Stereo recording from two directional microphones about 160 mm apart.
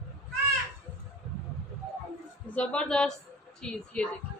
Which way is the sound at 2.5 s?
10° left (ahead or behind).